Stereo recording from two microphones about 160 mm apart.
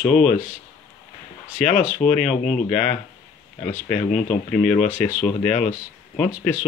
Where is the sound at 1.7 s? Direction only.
55° left (ahead or behind).